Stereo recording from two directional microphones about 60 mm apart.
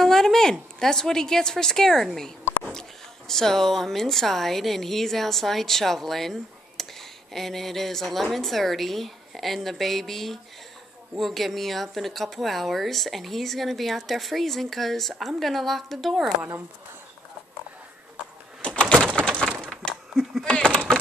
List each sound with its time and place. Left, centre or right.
0.0 s a woman's voice: centre
3.3 s a woman's voice: centre
19.1 s crack: centre
19.6 s a sound: centre
20.4 s speech: centre